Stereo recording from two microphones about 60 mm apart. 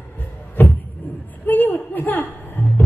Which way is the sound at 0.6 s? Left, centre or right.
Left.